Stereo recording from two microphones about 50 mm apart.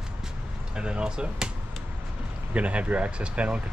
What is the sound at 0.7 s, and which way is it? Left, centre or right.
Speech, centre.